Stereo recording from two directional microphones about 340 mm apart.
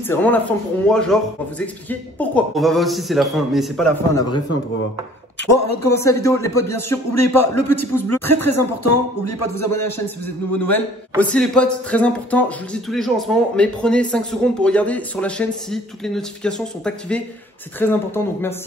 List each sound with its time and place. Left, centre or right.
0.1 s speech: centre
5.8 s speech: centre
7.1 s speech: left
11.1 s speech: centre